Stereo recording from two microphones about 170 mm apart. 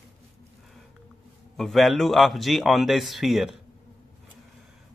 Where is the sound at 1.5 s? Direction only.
Centre (ahead or behind).